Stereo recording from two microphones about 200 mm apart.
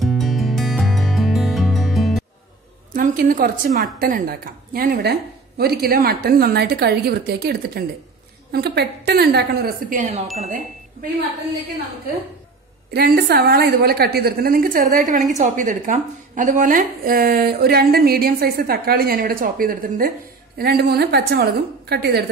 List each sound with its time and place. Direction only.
0.0 s music: centre (ahead or behind)
2.9 s a woman's voice: 40° right (ahead or behind)
12.9 s a woman's voice: 50° right (ahead or behind)